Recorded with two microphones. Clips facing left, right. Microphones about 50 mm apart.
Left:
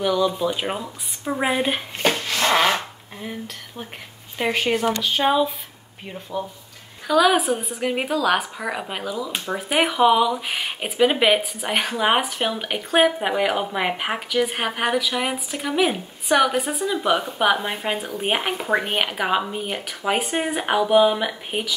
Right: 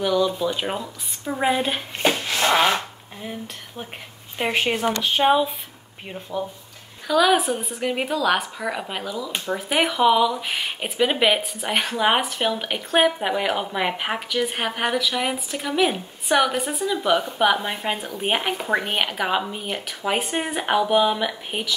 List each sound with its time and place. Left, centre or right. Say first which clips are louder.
0.0 s speech: even; centre
2.2 s a sound: even; centre
4.5 s speech: left 1 dB; right
7.1 s speech: left 1 dB; centre